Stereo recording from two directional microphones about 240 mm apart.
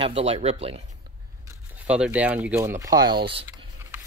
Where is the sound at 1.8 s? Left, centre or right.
Centre.